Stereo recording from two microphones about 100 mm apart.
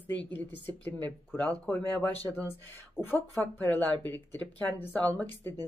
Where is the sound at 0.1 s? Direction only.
20° left (ahead or behind).